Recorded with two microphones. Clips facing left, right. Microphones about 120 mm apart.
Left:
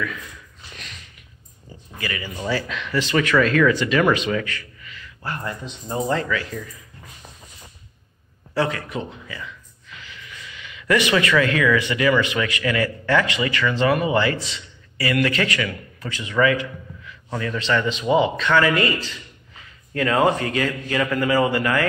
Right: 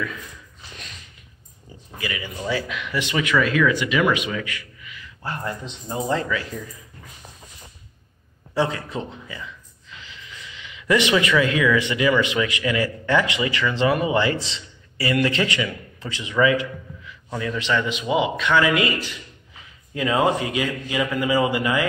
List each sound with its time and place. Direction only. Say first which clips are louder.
2.0 s a man's voice: left 1 dB; 15° right (ahead or behind)
8.5 s a man's voice: even; 20° right (ahead or behind)